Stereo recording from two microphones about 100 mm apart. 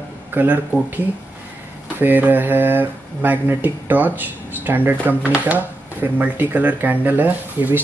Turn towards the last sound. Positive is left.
turn(degrees=-20)  # may be behind; listen again after turning